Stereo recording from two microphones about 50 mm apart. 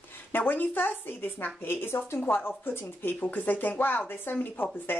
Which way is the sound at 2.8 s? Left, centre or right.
Left.